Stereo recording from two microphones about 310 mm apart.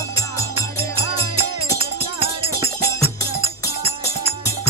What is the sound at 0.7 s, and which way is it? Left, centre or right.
Music, centre.